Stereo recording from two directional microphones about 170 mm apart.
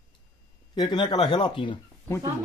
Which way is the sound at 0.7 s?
25° left (ahead or behind).